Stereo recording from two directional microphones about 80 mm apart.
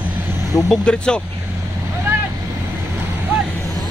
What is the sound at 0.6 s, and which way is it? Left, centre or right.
Speech, centre.